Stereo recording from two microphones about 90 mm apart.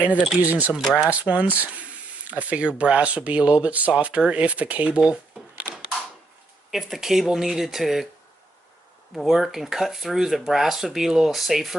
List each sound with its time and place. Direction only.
0.4 s speech: 15° right (ahead or behind)
5.1 s shuffling cards: 5° right (ahead or behind)
6.7 s speech: 5° right (ahead or behind)
9.1 s speech: centre (ahead or behind)